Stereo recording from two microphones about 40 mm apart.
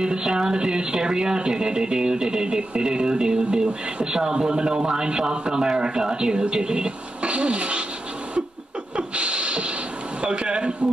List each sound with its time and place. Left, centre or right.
0.0 s speech: right
8.9 s a sound: right
10.2 s speech: right